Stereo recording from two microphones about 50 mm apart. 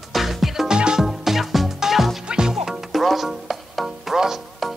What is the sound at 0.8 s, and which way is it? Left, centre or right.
Music, centre.